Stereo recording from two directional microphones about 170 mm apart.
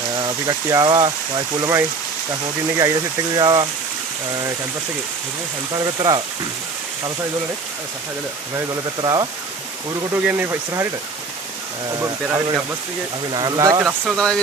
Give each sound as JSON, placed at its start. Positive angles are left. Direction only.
{"t": 0.2, "sound": "speech", "side_deg": -20}
{"t": 3.3, "sound": "speech", "side_deg": -25}
{"t": 5.9, "sound": "speech", "side_deg": -25}
{"t": 8.5, "sound": "speech", "side_deg": -25}
{"t": 10.2, "sound": "speech", "side_deg": -10}
{"t": 11.9, "sound": "speech", "side_deg": -20}
{"t": 13.8, "sound": "speech", "side_deg": 0}